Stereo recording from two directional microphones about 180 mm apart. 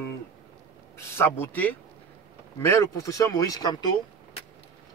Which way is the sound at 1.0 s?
15° left (ahead or behind).